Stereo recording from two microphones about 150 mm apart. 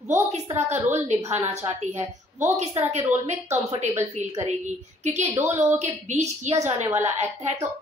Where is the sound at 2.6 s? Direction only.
50° right (ahead or behind).